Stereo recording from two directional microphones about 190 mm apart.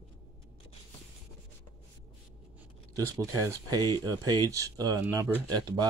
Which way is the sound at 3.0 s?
15° right (ahead or behind).